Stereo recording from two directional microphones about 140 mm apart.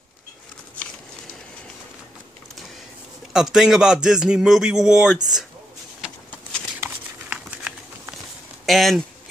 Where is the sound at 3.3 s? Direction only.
5° right (ahead or behind).